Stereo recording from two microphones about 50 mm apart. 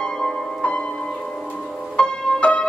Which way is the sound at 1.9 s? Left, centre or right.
Left.